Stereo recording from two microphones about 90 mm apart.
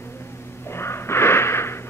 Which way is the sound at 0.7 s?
25° left (ahead or behind).